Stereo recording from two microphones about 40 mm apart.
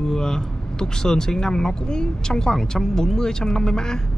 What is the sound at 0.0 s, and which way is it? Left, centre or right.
Speech, centre.